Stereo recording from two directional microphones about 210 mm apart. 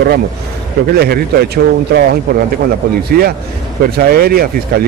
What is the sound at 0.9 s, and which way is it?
Speech, 45° right (ahead or behind).